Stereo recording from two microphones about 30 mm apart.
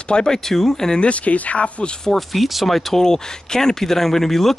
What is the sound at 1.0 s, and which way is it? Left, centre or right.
Speech, left.